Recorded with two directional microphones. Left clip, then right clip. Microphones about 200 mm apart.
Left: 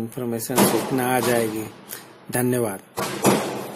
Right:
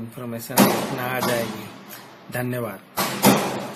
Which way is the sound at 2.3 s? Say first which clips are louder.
Left 5 dB; 40° left (ahead or behind).